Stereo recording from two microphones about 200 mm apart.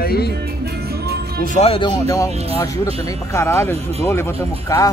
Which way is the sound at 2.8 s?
30° right (ahead or behind).